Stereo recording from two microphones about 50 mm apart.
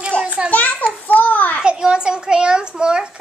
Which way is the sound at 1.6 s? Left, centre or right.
Centre.